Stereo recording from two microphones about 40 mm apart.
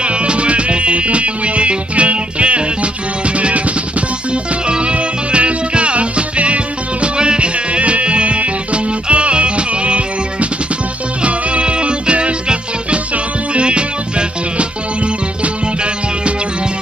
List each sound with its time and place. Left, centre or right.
0.0 s music: right